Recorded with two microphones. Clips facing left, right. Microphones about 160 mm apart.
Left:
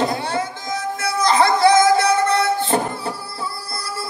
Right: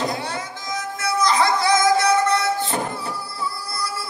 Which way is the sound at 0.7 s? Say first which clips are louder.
Even; 30° left (ahead or behind).